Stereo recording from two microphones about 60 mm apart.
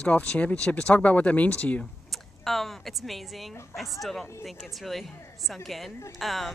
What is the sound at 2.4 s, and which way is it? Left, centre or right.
Speech, centre.